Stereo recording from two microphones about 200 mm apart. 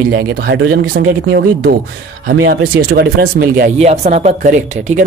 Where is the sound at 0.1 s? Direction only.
50° right (ahead or behind).